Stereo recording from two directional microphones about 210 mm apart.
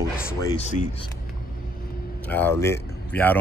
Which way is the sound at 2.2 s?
10° left (ahead or behind).